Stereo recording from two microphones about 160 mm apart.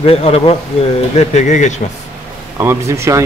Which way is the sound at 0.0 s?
40° left (ahead or behind).